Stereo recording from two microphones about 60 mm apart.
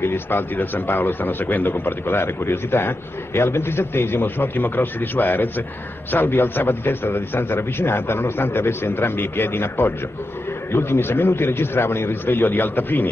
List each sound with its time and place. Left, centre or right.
0.0 s speech: left